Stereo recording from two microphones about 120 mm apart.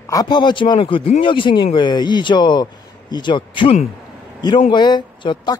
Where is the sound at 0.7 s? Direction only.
50° left (ahead or behind).